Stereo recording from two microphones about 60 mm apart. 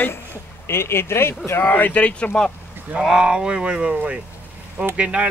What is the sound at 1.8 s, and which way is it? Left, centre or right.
Speech, left.